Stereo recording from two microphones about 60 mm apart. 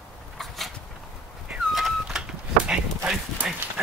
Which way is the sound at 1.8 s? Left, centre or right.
Centre.